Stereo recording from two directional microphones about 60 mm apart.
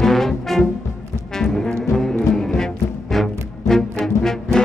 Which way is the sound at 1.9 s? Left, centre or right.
Centre.